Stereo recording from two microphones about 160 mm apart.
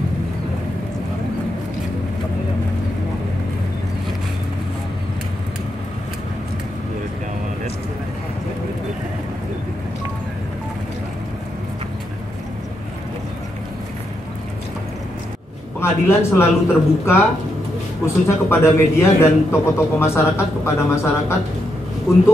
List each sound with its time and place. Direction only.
15.8 s speech: 15° left (ahead or behind)